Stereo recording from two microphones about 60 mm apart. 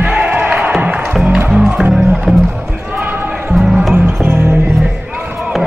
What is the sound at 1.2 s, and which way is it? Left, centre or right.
Music, centre.